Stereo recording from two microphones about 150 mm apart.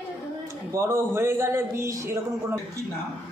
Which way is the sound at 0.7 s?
15° right (ahead or behind).